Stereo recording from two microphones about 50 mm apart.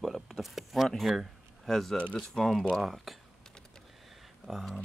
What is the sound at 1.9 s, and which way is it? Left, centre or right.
Speech, left.